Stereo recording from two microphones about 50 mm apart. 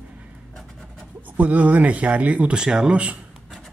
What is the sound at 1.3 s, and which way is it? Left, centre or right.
Speech, right.